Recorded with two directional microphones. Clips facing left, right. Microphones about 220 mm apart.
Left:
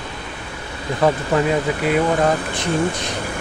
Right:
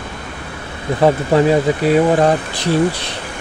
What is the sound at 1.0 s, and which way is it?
Speech, 35° right (ahead or behind).